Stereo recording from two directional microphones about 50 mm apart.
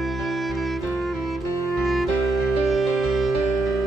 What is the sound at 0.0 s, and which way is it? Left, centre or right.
Music, centre.